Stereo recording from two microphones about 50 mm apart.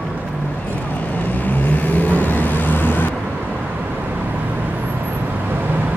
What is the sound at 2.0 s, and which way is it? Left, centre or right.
Vehicle, left.